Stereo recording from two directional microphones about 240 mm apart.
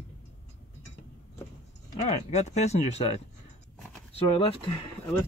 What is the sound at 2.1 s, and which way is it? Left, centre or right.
Speech, left.